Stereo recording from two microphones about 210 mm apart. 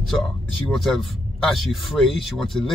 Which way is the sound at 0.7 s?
Centre (ahead or behind).